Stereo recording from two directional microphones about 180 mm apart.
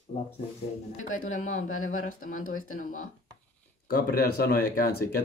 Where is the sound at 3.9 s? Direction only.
60° left (ahead or behind).